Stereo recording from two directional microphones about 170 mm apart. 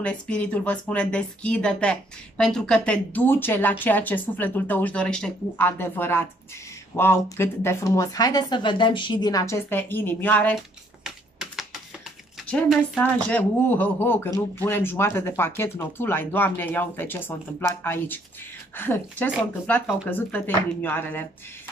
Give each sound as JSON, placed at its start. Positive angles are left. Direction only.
{"t": 0.0, "sound": "a woman's voice", "side_deg": 5}
{"t": 11.1, "sound": "typing", "side_deg": 0}
{"t": 12.6, "sound": "speech", "side_deg": 5}